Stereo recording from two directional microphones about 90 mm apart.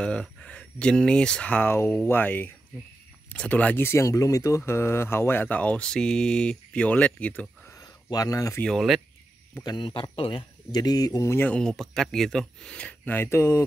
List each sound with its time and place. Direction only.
0.0 s speech: 10° left (ahead or behind)
7.8 s a sound: 45° left (ahead or behind)
8.6 s speech: centre (ahead or behind)
9.6 s speech: 50° left (ahead or behind)
10.1 s a man's voice: 80° left
10.7 s speech: 50° left (ahead or behind)
11.3 s speech: 20° left (ahead or behind)
11.6 s speech: 5° left (ahead or behind); by 13.7 s 30° left (ahead or behind)